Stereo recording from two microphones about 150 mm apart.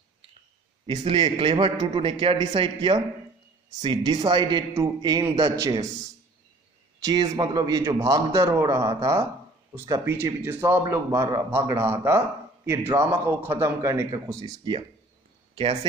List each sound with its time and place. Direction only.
0.8 s a man's voice: 35° right (ahead or behind)
7.0 s speech: 25° right (ahead or behind)